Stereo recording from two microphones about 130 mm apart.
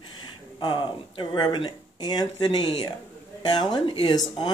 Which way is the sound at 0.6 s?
40° left (ahead or behind).